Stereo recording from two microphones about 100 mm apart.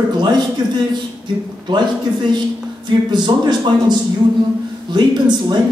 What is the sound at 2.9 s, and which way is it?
A man's voice, 50° right (ahead or behind).